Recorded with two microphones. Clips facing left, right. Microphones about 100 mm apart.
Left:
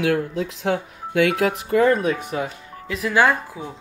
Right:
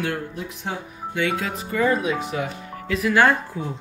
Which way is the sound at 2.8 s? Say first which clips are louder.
Right 3 dB; 30° left (ahead or behind).